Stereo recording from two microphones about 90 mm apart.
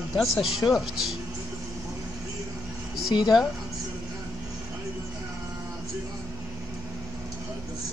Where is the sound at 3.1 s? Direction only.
55° left (ahead or behind).